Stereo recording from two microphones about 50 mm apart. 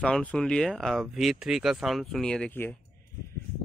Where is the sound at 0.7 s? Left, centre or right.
Centre.